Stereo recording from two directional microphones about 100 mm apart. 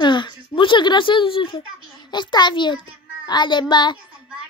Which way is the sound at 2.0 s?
50° left (ahead or behind).